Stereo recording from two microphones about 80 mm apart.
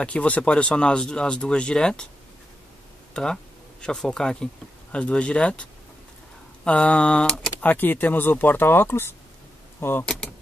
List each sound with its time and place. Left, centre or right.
0.0 s speech: centre
3.1 s speech: centre
7.7 s speech: left